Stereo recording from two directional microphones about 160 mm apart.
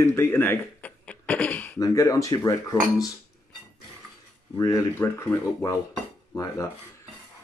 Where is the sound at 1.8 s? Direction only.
20° left (ahead or behind).